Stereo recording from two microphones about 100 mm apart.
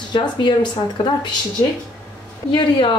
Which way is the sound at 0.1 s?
50° left (ahead or behind).